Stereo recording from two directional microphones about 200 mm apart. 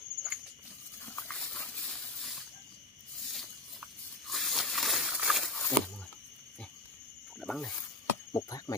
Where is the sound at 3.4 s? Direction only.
Centre (ahead or behind).